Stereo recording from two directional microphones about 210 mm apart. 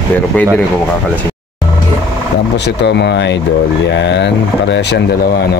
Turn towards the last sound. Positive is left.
turn(degrees=55)  # may be behind; listen again after turning